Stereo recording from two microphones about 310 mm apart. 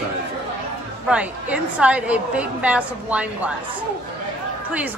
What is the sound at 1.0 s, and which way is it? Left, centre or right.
A woman's voice, centre.